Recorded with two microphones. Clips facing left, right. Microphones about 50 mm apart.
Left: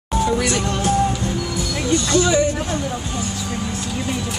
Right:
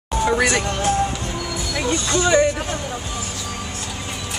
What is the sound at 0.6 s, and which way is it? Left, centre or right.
Music, right.